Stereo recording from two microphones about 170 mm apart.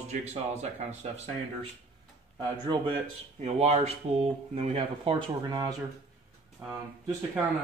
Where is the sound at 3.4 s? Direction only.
40° right (ahead or behind).